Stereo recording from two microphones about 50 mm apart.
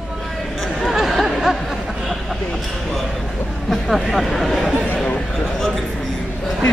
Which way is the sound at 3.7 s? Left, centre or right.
Centre.